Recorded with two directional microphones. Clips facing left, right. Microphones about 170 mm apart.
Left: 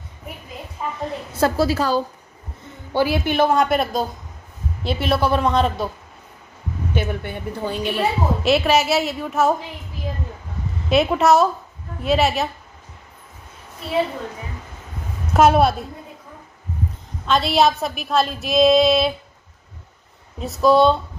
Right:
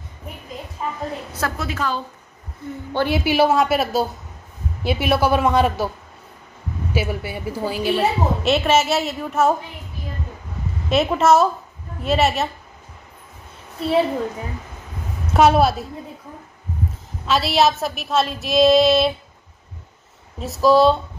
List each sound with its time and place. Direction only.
1.3 s a woman's voice: 30° left (ahead or behind)
2.9 s a woman's voice: 10° left (ahead or behind)
3.2 s a woman's voice: 5° right (ahead or behind)
6.9 s a woman's voice: 5° right (ahead or behind)
10.9 s a woman's voice: centre (ahead or behind)
15.3 s a woman's voice: centre (ahead or behind)
17.3 s a woman's voice: centre (ahead or behind)
20.3 s a woman's voice: centre (ahead or behind)